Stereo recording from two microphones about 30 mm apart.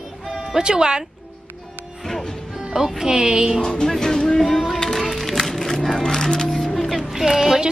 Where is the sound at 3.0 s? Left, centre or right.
Right.